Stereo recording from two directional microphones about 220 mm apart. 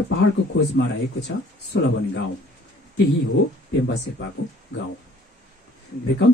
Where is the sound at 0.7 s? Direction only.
50° left (ahead or behind).